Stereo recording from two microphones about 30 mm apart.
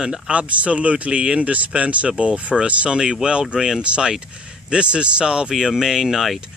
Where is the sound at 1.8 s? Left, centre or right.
Right.